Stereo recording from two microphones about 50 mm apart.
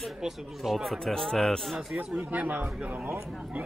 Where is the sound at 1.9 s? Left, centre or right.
Right.